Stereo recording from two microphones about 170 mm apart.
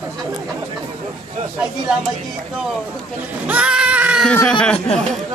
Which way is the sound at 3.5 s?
5° right (ahead or behind).